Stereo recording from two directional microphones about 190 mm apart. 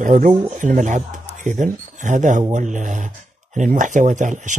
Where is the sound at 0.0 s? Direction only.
40° right (ahead or behind).